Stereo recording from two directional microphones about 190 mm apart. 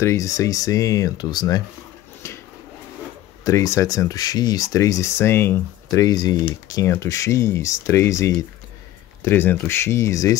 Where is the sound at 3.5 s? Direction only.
15° left (ahead or behind).